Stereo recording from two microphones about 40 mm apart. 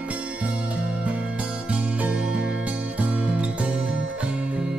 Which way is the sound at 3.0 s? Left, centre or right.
Right.